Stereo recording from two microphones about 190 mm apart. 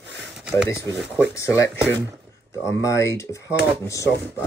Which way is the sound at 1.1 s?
15° left (ahead or behind).